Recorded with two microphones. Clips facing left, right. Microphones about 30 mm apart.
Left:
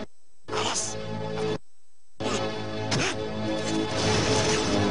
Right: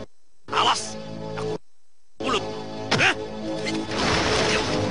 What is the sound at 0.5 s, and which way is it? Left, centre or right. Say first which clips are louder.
Speech: right 8 dB; right.